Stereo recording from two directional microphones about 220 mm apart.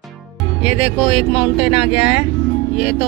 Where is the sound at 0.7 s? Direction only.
5° right (ahead or behind).